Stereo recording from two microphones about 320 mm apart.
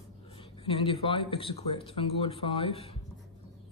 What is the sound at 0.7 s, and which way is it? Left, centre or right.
Speech, centre.